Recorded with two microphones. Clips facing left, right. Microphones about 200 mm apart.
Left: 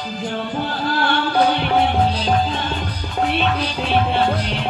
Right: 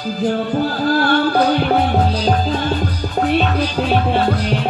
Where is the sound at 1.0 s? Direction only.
40° right (ahead or behind).